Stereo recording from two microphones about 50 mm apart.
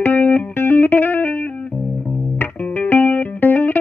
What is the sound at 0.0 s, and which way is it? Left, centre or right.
Music, left.